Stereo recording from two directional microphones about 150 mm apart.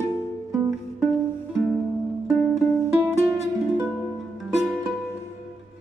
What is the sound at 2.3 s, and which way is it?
Music, 20° left (ahead or behind).